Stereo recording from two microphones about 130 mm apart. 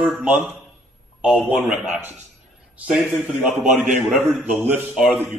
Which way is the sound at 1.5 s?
Centre (ahead or behind).